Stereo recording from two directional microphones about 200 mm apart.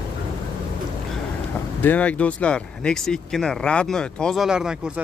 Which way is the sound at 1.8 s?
10° left (ahead or behind).